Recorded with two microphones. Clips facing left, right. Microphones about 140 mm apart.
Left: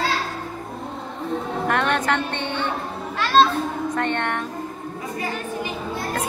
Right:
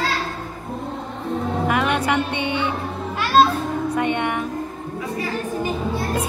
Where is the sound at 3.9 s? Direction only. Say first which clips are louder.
Right 3 dB; 10° right (ahead or behind).